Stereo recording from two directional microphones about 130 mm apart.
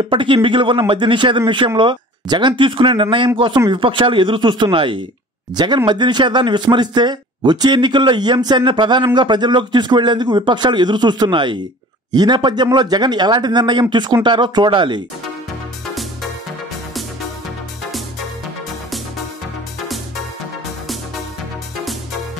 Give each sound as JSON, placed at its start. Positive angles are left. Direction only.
{"t": 0.1, "sound": "speech", "side_deg": -40}